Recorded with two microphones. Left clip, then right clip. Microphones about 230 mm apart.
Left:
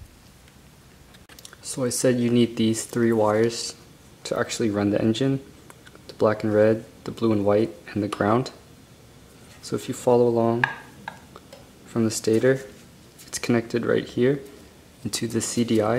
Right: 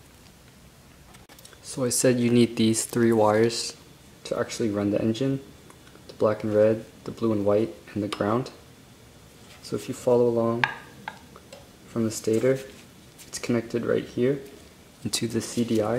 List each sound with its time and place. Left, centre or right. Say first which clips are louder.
1.7 s speech: left 1 dB; centre
9.7 s stir: left 2 dB; centre
11.9 s speech: left 3 dB; centre